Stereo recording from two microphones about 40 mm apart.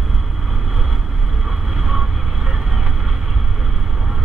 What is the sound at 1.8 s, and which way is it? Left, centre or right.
Vehicle, centre.